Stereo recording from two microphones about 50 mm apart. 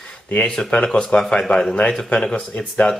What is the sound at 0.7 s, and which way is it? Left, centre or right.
Speech, left.